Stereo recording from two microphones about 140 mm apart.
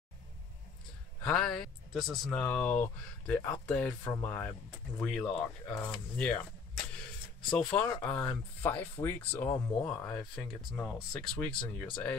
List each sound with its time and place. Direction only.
1.2 s speech: 5° left (ahead or behind)
7.4 s speech: 5° left (ahead or behind)